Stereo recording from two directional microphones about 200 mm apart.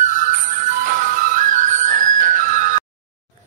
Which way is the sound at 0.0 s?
40° right (ahead or behind).